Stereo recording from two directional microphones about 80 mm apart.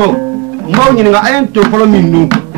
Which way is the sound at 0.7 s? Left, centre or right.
Right.